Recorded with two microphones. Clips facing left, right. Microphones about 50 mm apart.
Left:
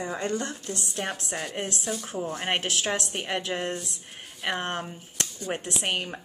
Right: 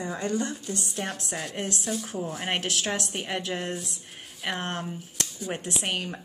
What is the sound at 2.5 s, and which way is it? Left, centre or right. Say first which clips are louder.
Speech: left 1 dB; left.